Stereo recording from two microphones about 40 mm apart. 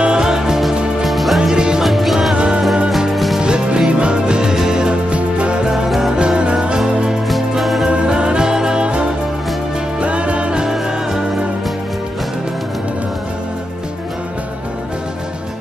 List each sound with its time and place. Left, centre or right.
0.0 s music: centre
1.0 s music: centre
1.4 s music: centre
1.8 s music: centre
2.3 s music: right
5.1 s music: right
5.6 s music: centre
7.2 s music: centre
7.9 s music: right